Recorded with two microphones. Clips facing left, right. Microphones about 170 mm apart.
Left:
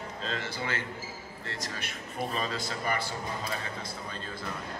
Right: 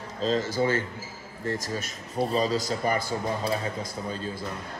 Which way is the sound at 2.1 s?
35° right (ahead or behind).